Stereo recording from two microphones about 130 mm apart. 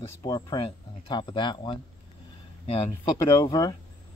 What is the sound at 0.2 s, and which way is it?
Speech, 35° left (ahead or behind).